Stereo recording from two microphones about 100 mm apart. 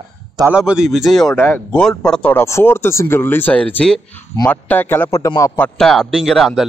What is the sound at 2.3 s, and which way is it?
Speech, 20° left (ahead or behind).